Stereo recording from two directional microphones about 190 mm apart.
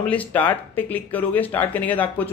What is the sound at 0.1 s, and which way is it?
Speech, 10° left (ahead or behind).